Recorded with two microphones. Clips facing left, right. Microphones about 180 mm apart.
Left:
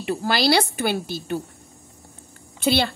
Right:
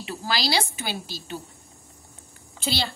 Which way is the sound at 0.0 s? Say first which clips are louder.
Left 7 dB; 55° left (ahead or behind).